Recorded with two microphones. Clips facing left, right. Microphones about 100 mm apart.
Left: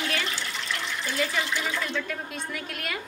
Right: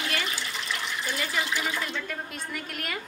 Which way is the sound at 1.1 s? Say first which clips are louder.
Left 3 dB; 5° right (ahead or behind).